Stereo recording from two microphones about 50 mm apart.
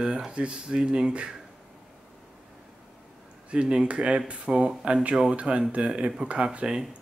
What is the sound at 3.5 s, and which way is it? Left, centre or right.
Speech, centre.